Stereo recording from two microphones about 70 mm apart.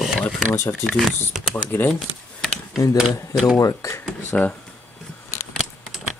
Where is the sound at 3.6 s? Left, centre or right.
Left.